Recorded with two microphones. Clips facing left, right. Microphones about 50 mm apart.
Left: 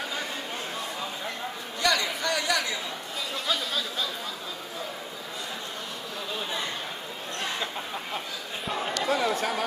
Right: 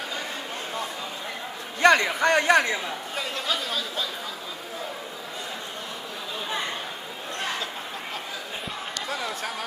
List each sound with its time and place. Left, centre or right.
1.8 s a man's voice: right